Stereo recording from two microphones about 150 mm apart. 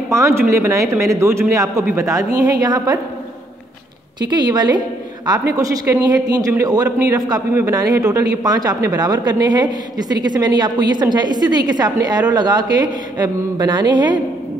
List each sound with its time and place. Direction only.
0.1 s a man's voice: 20° right (ahead or behind)
4.3 s a man's voice: 30° right (ahead or behind)